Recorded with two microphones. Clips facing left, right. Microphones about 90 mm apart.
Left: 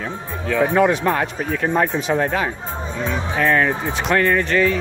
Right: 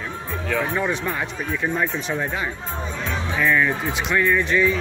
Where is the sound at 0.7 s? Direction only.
65° left (ahead or behind).